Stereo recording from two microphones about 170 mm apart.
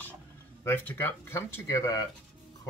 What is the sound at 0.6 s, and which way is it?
Speech, 10° left (ahead or behind).